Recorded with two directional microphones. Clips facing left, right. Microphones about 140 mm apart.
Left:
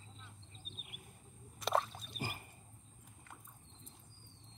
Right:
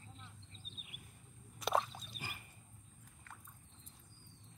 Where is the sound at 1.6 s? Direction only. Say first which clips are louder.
Left 1 dB; centre (ahead or behind).